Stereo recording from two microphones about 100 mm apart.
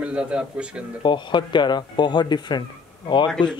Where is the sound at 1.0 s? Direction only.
50° left (ahead or behind).